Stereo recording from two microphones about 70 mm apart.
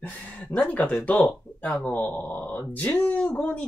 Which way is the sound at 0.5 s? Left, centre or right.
Centre.